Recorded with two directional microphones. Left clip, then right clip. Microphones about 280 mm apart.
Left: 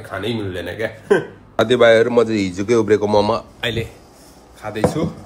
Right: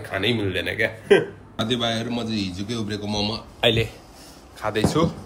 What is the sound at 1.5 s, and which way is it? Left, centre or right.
Speech, centre.